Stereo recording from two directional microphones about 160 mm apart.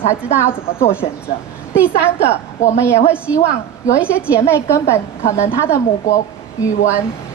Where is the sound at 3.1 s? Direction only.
10° right (ahead or behind).